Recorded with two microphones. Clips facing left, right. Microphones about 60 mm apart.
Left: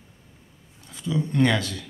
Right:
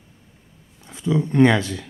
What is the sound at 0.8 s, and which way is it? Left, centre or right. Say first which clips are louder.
Speech: right 5 dB; right.